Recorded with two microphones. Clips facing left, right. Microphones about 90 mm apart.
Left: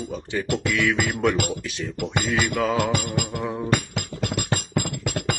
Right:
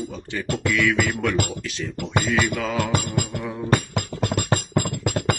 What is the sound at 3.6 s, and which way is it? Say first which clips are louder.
Music: right 2 dB; 40° right (ahead or behind).